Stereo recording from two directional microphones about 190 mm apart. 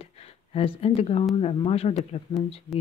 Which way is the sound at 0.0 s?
30° left (ahead or behind).